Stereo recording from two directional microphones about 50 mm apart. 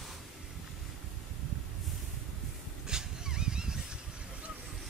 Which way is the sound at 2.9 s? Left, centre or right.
Centre.